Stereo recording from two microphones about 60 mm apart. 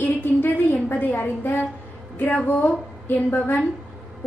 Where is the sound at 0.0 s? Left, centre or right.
Left.